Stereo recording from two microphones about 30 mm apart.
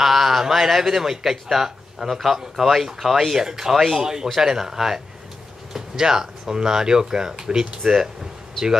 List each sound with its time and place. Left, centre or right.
0.0 s speech: centre